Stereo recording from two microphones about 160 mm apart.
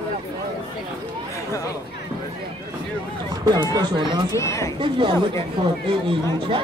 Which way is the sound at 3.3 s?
25° right (ahead or behind).